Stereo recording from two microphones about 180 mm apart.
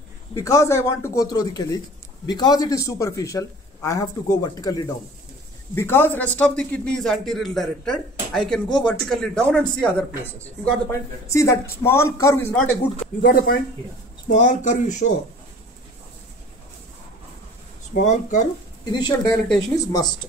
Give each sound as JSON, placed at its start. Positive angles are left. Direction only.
{"t": 0.3, "sound": "a man's voice", "side_deg": 15}
{"t": 13.2, "sound": "speech", "side_deg": 55}
{"t": 14.3, "sound": "speech", "side_deg": 45}
{"t": 17.9, "sound": "speech", "side_deg": 45}
{"t": 18.9, "sound": "a man's voice", "side_deg": 25}
{"t": 19.3, "sound": "speech", "side_deg": 5}
{"t": 19.7, "sound": "a man's voice", "side_deg": 20}